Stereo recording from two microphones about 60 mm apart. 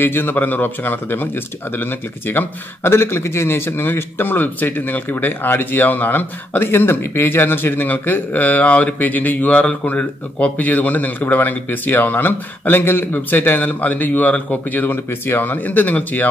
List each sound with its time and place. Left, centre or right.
0.0 s a man's voice: left